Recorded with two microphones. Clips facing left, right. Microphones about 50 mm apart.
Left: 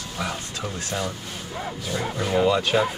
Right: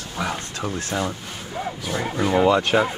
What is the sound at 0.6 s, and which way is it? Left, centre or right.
Speech, right.